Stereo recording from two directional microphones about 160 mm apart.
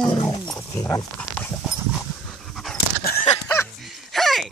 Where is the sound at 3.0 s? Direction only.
65° left (ahead or behind).